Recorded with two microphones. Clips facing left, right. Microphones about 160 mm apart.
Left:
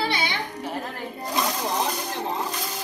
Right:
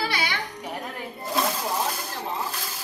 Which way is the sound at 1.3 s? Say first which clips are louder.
Even; 5° right (ahead or behind).